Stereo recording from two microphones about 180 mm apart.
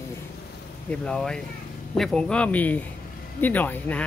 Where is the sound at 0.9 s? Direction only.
5° left (ahead or behind).